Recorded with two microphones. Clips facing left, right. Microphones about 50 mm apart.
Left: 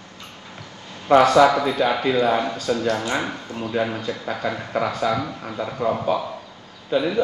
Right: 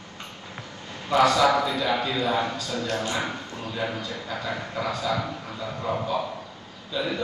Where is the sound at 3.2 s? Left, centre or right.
Centre.